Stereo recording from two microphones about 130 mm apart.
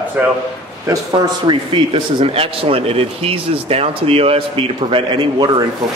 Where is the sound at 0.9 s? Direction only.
30° right (ahead or behind).